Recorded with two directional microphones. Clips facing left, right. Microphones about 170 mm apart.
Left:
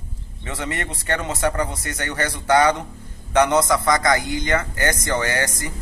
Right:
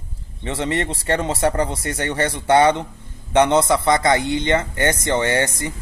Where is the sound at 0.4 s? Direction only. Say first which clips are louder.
Right 6 dB; 30° right (ahead or behind).